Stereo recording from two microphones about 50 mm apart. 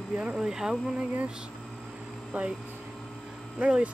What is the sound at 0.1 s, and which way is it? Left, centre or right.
Speech, right.